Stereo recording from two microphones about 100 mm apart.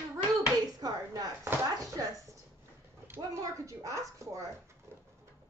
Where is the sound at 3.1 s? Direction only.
35° right (ahead or behind).